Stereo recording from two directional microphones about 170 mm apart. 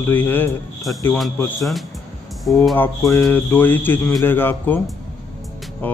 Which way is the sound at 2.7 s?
15° left (ahead or behind).